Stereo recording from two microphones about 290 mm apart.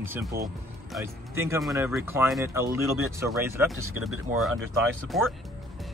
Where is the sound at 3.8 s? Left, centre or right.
Right.